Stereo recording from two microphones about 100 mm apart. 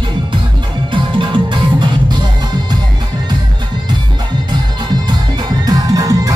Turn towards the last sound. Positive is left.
turn(degrees=-35)  # may be behind; listen again after turning